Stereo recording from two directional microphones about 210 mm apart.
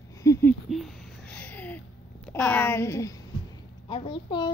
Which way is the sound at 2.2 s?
5° left (ahead or behind).